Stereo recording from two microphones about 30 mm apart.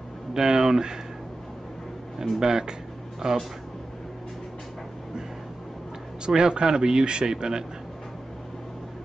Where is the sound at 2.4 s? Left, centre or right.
Centre.